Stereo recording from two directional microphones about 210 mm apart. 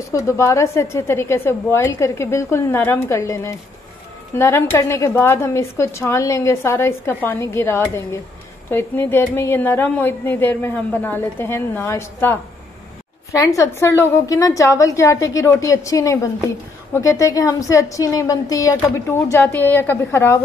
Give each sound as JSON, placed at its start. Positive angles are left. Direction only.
{"t": 0.1, "sound": "a woman's voice", "side_deg": 15}